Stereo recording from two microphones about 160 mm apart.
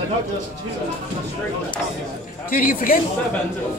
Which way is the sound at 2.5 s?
60° left (ahead or behind).